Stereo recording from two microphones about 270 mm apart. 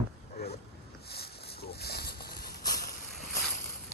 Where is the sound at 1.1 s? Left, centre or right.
Left.